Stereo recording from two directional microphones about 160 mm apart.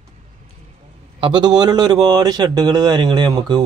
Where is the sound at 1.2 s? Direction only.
30° right (ahead or behind).